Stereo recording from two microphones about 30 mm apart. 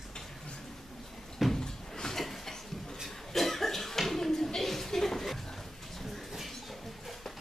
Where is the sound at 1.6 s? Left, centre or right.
Left.